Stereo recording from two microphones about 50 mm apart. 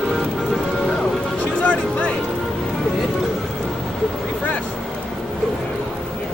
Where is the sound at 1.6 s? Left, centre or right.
Left.